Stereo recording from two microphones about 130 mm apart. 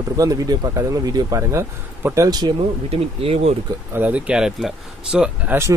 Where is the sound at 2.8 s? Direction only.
50° right (ahead or behind).